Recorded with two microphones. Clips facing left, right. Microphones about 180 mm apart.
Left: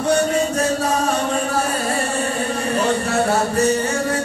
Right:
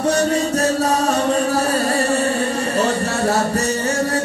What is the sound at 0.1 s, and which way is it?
Music, 40° right (ahead or behind).